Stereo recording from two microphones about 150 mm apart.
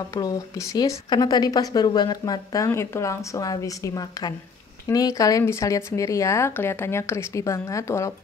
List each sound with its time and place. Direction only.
0.1 s speech: 25° left (ahead or behind)